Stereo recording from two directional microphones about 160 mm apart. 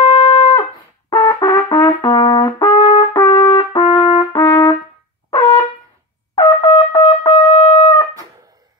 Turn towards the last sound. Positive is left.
turn(degrees=35)  # may be behind; listen again after turning